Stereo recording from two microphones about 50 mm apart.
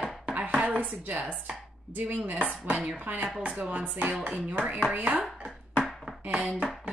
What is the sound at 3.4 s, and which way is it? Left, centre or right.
Speech, right.